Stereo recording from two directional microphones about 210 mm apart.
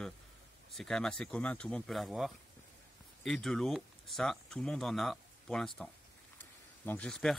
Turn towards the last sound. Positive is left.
turn(degrees=0)  # may be behind; listen again after turning